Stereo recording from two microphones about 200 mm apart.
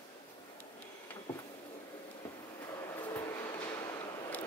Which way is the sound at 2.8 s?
15° left (ahead or behind).